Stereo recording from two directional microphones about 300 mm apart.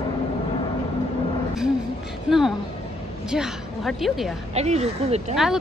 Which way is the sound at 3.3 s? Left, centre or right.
Centre.